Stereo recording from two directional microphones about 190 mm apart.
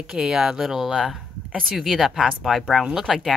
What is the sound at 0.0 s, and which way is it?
Speech, 5° right (ahead or behind).